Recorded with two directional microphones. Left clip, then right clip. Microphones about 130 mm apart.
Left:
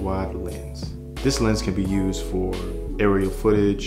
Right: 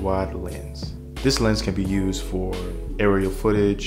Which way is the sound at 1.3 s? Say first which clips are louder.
Right 1 dB; 35° right (ahead or behind).